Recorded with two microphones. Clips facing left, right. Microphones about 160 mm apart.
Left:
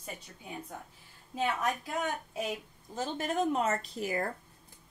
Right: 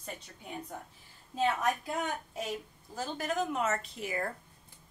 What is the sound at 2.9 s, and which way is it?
A woman's voice, 25° left (ahead or behind).